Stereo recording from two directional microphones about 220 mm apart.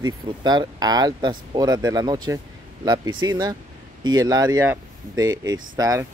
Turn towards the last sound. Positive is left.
turn(degrees=-15)  # may be behind; listen again after turning